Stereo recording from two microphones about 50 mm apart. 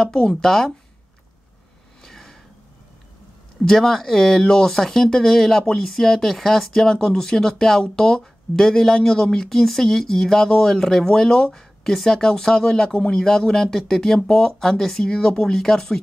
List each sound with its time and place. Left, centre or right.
0.0 s speech: centre
2.0 s a sound: centre
3.6 s speech: centre